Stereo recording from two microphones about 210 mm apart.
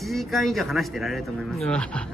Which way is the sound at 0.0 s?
Centre (ahead or behind).